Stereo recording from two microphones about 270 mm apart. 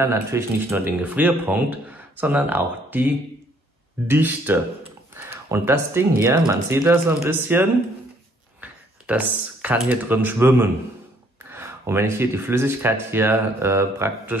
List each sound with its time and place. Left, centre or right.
0.0 s speech: centre